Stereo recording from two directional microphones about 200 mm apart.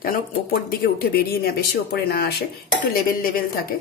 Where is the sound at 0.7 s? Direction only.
50° left (ahead or behind).